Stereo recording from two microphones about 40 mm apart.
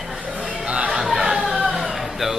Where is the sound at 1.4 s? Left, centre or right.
Centre.